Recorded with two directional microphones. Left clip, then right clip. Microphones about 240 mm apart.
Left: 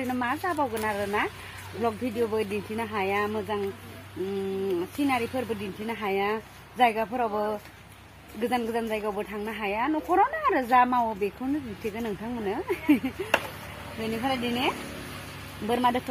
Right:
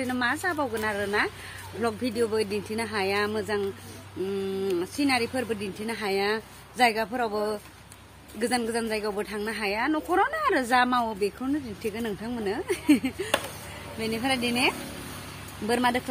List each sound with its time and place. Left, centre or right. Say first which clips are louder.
0.0 s speech: right 2 dB; centre
4.6 s speech: right 2 dB; centre
14.1 s speech: right 2 dB; centre
15.7 s speech: even; centre